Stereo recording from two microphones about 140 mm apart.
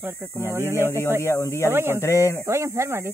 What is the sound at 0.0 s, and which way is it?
Speech, 15° right (ahead or behind).